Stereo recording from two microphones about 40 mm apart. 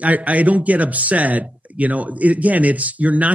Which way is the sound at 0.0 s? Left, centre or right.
Right.